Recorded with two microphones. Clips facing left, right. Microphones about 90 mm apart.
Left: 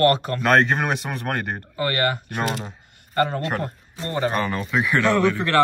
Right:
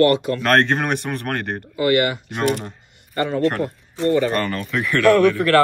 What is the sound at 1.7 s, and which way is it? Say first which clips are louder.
A man's voice: right 5 dB; 40° left (ahead or behind).